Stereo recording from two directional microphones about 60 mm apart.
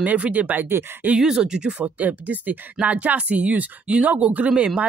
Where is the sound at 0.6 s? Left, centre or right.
Right.